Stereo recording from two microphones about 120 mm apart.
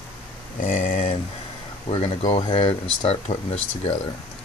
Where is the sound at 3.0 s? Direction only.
60° left (ahead or behind).